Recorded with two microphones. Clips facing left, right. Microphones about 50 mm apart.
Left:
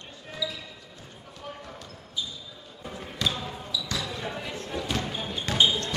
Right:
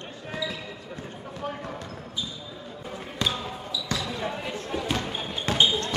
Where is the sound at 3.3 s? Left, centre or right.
Centre.